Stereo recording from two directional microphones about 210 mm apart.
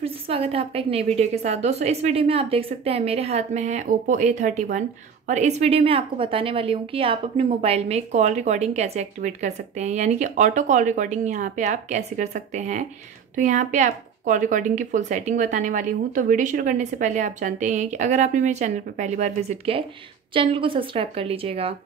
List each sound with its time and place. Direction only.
0.0 s a woman's voice: 30° right (ahead or behind)